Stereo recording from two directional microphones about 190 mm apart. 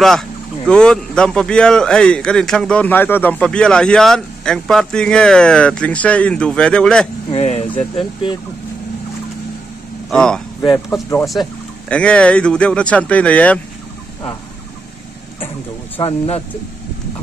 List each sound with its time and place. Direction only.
0.7 s speech: 5° left (ahead or behind)
7.2 s speech: 35° left (ahead or behind)
10.0 s speech: 5° left (ahead or behind)
16.0 s speech: 30° left (ahead or behind)